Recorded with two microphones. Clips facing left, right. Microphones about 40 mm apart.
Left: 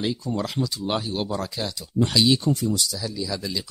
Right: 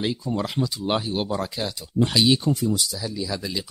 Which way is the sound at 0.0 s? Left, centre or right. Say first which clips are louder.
Right 1 dB; centre.